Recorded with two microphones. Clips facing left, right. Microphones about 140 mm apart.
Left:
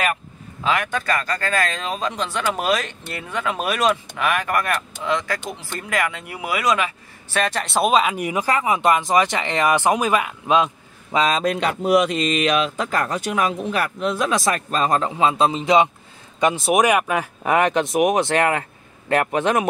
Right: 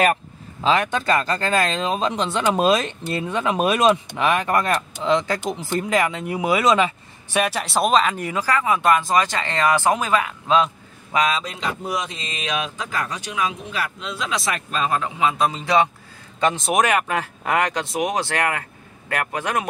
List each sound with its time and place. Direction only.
0.7 s speech: 25° right (ahead or behind)
7.3 s speech: 10° right (ahead or behind); by 10.7 s 20° left (ahead or behind)
11.1 s a man's voice: 40° left (ahead or behind)
11.4 s speech: 65° left (ahead or behind); by 19.6 s 25° left (ahead or behind)